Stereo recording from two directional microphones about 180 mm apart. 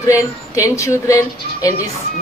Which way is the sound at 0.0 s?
15° left (ahead or behind).